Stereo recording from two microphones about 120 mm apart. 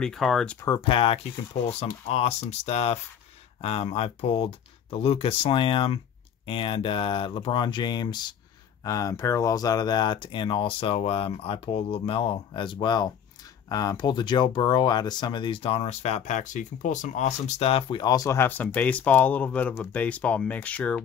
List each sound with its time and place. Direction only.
0.0 s speech: 5° left (ahead or behind)
0.7 s speech: 45° left (ahead or behind); by 21.0 s 10° left (ahead or behind)